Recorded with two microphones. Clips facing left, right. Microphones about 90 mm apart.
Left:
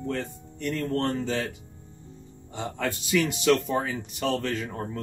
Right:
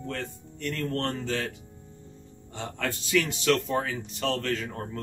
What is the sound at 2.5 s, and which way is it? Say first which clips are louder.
Speech: left 2 dB; 15° left (ahead or behind).